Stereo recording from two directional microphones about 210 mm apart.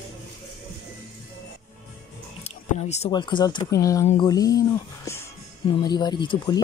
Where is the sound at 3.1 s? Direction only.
20° left (ahead or behind).